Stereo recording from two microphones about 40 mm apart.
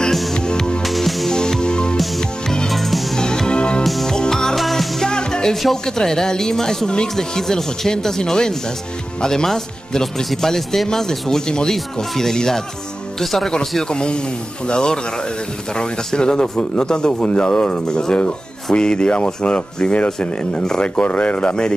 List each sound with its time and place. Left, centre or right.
0.0 s music: centre
0.4 s music: centre
0.8 s music: centre
1.3 s music: centre
2.7 s music: centre
3.2 s music: centre
3.8 s music: centre
4.2 s music: centre
4.6 s music: centre
5.0 s music: centre
5.9 s speech: centre
13.8 s speech: left
20.1 s speech: centre
21.0 s speech: left